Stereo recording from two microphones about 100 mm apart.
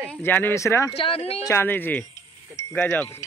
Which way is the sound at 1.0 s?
75° left (ahead or behind).